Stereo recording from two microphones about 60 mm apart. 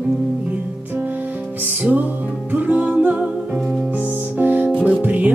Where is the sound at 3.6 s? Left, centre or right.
Centre.